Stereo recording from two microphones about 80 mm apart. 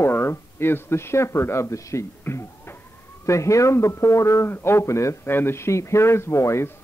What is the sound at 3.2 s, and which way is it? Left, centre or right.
A man's voice, left.